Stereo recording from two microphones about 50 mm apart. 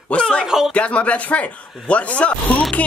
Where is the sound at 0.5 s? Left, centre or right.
Centre.